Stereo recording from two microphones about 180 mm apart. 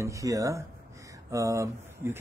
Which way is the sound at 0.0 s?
15° right (ahead or behind).